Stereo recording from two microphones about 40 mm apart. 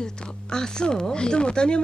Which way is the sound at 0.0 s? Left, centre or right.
Centre.